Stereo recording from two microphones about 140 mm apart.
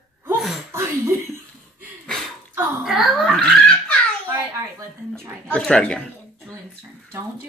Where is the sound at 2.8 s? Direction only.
5° right (ahead or behind).